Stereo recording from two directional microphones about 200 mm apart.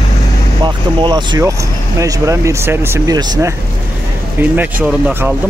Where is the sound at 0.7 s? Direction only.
25° right (ahead or behind).